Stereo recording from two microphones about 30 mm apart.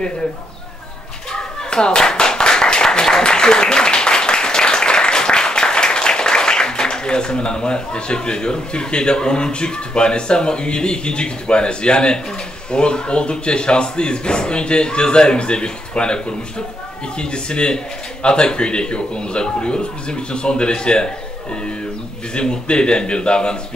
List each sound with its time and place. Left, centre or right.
1.3 s clapping: left
12.7 s speech: left
22.3 s speech: left